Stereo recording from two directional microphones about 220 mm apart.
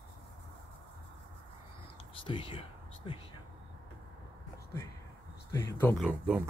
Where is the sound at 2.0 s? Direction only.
20° left (ahead or behind).